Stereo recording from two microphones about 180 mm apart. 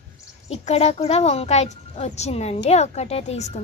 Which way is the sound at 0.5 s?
35° left (ahead or behind).